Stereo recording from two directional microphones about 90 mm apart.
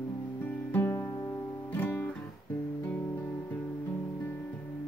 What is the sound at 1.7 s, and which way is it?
Guitar, 20° left (ahead or behind).